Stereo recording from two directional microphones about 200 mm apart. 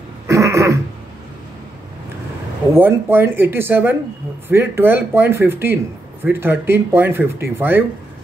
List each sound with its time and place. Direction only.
0.3 s throat clearing: 15° right (ahead or behind)
2.7 s speech: 10° right (ahead or behind)